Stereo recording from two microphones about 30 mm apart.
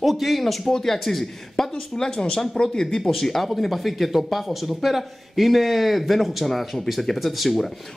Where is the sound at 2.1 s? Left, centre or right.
Left.